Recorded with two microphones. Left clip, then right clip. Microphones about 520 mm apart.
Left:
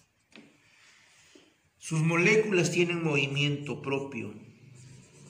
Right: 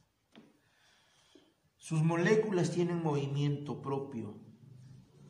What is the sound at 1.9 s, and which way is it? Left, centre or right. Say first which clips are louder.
A man's voice: left 5 dB; right.